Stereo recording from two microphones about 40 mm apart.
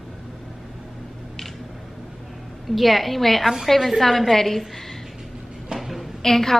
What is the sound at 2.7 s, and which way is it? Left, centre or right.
A woman's voice, centre.